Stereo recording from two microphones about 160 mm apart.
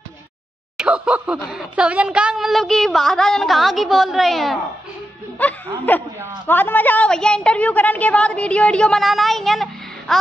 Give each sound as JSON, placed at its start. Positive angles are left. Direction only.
{"t": 0.7, "sound": "a woman's voice", "side_deg": -5}